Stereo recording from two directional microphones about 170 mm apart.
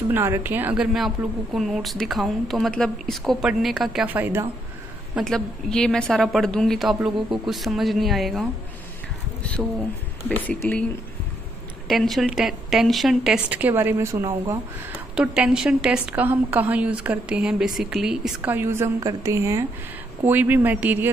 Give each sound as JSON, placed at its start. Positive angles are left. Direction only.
{"t": 0.1, "sound": "a woman's voice", "side_deg": -15}
{"t": 5.1, "sound": "a woman's voice", "side_deg": 5}
{"t": 10.2, "sound": "speech", "side_deg": 10}
{"t": 11.9, "sound": "a woman's voice", "side_deg": 0}
{"t": 15.1, "sound": "a woman's voice", "side_deg": -5}